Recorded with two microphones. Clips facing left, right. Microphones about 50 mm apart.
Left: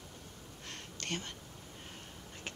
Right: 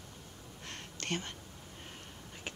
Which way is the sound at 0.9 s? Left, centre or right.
Centre.